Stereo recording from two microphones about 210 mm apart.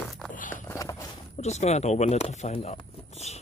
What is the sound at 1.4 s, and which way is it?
Speech, 30° left (ahead or behind).